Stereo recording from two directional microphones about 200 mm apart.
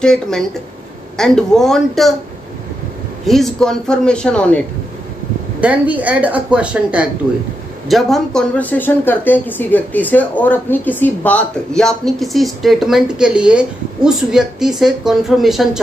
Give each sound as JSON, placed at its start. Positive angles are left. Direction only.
{"t": 0.0, "sound": "speech", "side_deg": 5}
{"t": 3.3, "sound": "speech", "side_deg": 0}
{"t": 5.6, "sound": "speech", "side_deg": -5}